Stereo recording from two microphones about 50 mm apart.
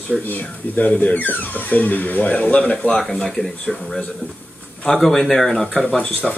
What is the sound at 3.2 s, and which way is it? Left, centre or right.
Speech, centre.